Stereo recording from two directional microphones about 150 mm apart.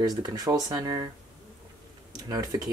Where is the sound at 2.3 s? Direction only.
25° right (ahead or behind).